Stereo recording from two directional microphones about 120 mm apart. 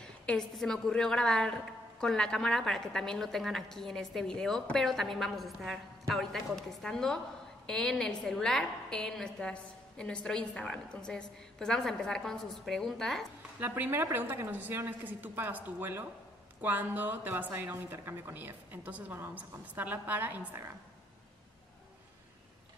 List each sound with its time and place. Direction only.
0.0 s a woman's voice: 5° left (ahead or behind)
13.6 s a woman's voice: 20° right (ahead or behind)